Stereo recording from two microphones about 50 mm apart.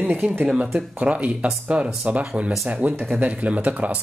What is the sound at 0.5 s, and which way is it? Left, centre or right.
Speech, centre.